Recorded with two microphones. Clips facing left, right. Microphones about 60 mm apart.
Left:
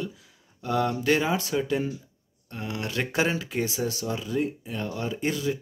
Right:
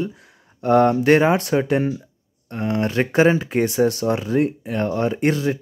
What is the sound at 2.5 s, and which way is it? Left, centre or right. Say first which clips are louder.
Speech: right 10 dB; right.